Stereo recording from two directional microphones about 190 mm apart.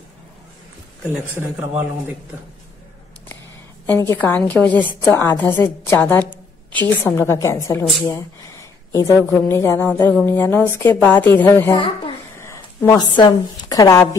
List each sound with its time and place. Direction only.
1.4 s a man's voice: 10° right (ahead or behind)
3.9 s a woman's voice: 10° left (ahead or behind)